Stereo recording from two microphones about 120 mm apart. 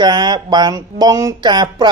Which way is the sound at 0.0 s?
35° right (ahead or behind).